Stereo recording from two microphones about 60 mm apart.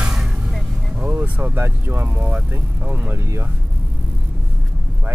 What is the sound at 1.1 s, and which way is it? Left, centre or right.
Vehicle, right.